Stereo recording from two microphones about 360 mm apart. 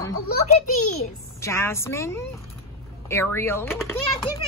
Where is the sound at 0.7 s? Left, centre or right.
Left.